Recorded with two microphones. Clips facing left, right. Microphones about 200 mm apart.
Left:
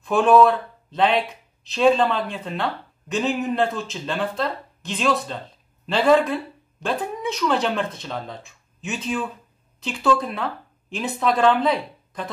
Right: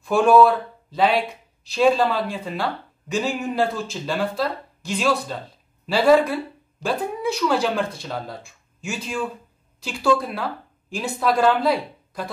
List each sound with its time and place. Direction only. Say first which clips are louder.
0.0 s speech: right 1 dB; centre (ahead or behind)